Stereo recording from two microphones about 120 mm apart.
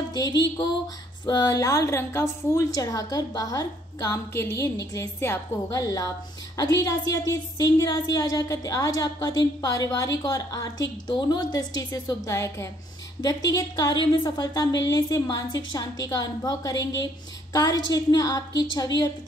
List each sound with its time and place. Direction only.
0.1 s a woman's voice: 35° left (ahead or behind)